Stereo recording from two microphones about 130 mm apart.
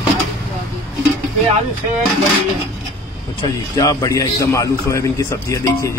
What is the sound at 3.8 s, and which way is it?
A man's voice, 25° left (ahead or behind).